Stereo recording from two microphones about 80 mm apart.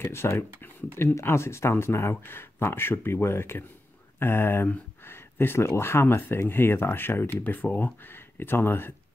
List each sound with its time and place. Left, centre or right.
0.0 s speech: left